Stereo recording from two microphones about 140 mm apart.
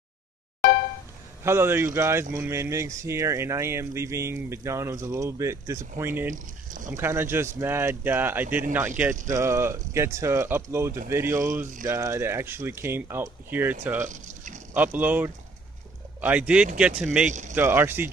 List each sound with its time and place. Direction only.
1.4 s speech: 15° right (ahead or behind)
6.3 s speech: 65° right (ahead or behind)
7.0 s speech: 15° right (ahead or behind)
14.0 s a sound: 65° right (ahead or behind)
15.0 s speech: 15° right (ahead or behind)
17.3 s speech: 60° right (ahead or behind)
17.6 s speech: 15° right (ahead or behind)